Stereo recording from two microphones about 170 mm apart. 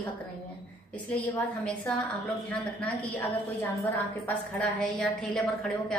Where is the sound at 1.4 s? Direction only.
5° left (ahead or behind).